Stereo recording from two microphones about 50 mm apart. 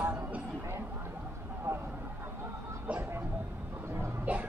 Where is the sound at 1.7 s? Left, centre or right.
Right.